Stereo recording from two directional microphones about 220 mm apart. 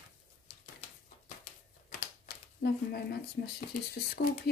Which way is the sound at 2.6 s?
45° left (ahead or behind).